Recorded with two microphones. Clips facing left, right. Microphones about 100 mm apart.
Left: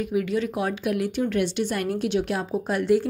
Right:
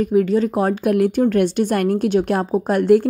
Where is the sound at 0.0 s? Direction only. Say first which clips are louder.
Right 8 dB; 40° right (ahead or behind).